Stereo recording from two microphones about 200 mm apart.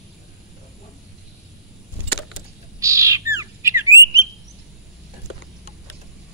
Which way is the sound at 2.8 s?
15° right (ahead or behind).